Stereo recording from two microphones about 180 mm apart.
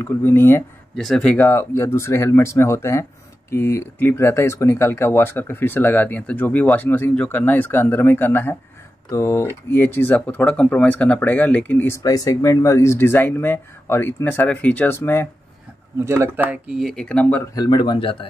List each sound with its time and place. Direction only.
0.0 s speech: 10° left (ahead or behind)
0.9 s speech: 5° left (ahead or behind)
1.4 s speech: 15° left (ahead or behind)
16.0 s speech: 15° right (ahead or behind); by 17.4 s 5° left (ahead or behind)
17.6 s speech: 25° left (ahead or behind)